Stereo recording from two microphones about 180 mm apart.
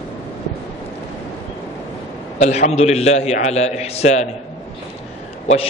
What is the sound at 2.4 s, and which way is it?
A man's voice, 40° left (ahead or behind).